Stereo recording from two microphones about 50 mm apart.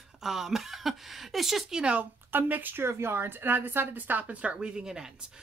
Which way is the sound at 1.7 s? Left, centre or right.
Right.